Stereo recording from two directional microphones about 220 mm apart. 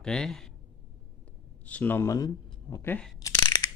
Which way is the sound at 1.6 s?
5° left (ahead or behind).